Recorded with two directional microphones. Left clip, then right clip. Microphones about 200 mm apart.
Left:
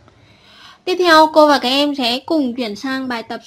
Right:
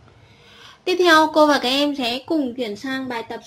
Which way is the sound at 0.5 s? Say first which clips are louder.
Left 2 dB; 20° left (ahead or behind).